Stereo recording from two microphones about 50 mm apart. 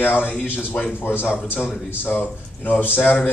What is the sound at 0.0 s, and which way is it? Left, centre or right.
A man's voice, left.